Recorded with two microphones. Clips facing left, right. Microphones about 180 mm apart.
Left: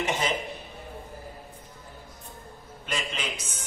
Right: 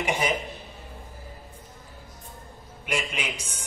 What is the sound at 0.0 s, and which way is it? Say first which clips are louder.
Speech: right 2 dB; 10° right (ahead or behind).